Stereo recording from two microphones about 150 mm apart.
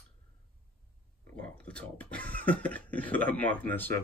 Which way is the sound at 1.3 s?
10° left (ahead or behind).